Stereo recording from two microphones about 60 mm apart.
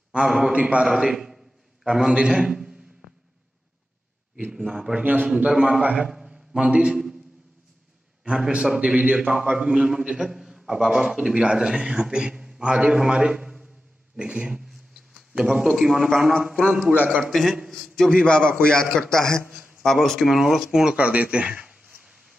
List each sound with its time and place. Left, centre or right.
0.5 s speech: centre
0.8 s a man's voice: centre
4.5 s a man's voice: centre
5.0 s speech: right
5.3 s a man's voice: centre
5.9 s a sound: centre
8.2 s a man's voice: centre
16.5 s speech: centre
17.2 s a man's voice: centre
20.2 s a man's voice: centre
21.0 s speech: right